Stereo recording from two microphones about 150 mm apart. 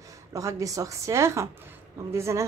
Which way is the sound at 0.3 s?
20° right (ahead or behind).